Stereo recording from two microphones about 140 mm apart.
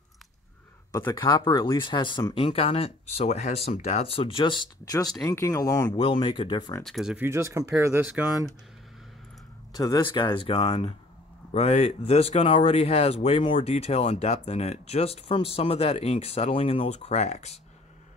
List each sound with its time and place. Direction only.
0.9 s speech: 25° left (ahead or behind)
5.2 s speech: 20° left (ahead or behind)
5.9 s speech: 35° left (ahead or behind)
6.8 s speech: centre (ahead or behind)
7.2 s speech: 20° right (ahead or behind)
9.8 s speech: 30° left (ahead or behind)
11.5 s speech: 50° left (ahead or behind)